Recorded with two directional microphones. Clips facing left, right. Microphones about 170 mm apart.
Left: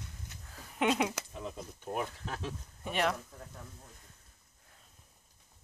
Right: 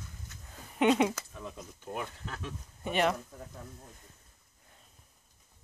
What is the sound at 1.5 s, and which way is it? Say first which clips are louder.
Speech: left 3 dB; 5° left (ahead or behind).